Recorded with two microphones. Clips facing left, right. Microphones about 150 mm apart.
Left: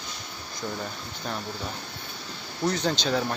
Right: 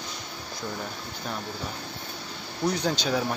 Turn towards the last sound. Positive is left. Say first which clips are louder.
# even
turn(degrees=-10)  # may be behind; listen again after turning